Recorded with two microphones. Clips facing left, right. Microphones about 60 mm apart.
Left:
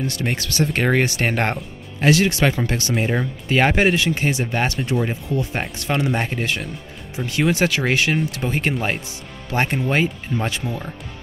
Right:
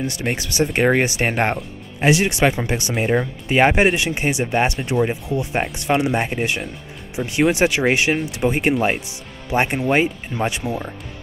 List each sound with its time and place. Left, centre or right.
0.4 s speech: centre
2.9 s speech: centre
3.4 s speech: centre